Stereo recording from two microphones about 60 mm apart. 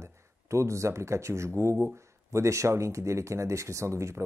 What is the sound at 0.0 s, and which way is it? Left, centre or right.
Speech, right.